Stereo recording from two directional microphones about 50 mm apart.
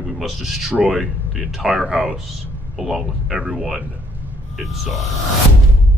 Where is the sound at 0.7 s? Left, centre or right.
Right.